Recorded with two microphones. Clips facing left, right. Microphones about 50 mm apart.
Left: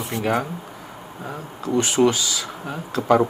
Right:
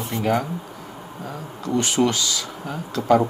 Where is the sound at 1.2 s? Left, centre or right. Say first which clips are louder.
Left 1 dB; left.